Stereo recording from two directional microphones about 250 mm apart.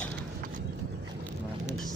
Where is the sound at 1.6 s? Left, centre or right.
Centre.